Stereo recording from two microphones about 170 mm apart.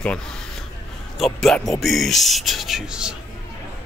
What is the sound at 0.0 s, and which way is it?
Speech, 5° left (ahead or behind).